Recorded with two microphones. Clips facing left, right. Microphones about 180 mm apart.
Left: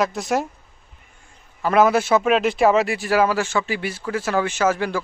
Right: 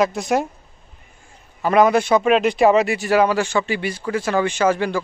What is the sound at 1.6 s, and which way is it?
A man's voice, centre (ahead or behind).